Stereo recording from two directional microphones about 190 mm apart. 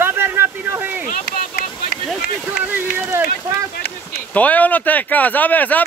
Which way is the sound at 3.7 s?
55° left (ahead or behind).